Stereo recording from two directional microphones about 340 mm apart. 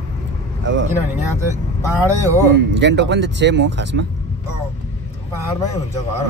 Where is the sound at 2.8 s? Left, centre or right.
Right.